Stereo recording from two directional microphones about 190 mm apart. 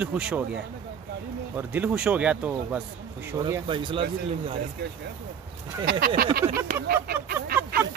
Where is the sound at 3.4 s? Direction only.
25° right (ahead or behind).